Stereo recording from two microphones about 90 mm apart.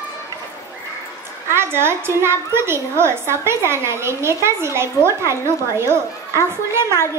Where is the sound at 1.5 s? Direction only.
25° right (ahead or behind).